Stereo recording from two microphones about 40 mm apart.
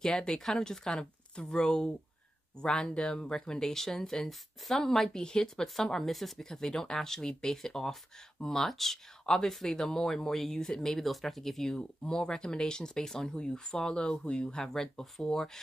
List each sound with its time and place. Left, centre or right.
0.3 s speech: centre
5.1 s speech: centre
11.1 s speech: centre; by 14.7 s left
14.7 s speech: centre